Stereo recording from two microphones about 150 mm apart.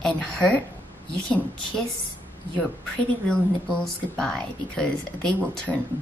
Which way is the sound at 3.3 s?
5° left (ahead or behind).